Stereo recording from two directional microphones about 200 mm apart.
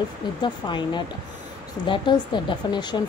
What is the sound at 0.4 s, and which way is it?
Speech, 25° left (ahead or behind).